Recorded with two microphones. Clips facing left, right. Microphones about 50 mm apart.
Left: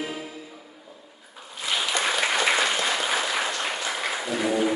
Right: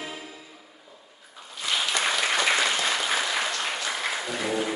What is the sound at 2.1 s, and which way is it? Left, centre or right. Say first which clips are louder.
Applause: left 2 dB; centre.